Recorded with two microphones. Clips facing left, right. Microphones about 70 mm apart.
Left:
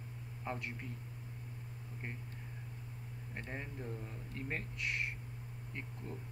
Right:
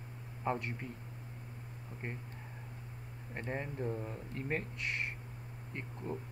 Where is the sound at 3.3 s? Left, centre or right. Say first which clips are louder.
Right 6 dB; centre.